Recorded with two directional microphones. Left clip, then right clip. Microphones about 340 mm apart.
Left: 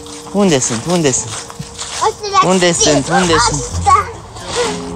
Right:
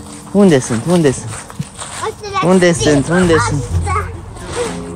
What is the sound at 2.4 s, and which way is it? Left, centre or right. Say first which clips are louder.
Speech: right 3 dB; centre.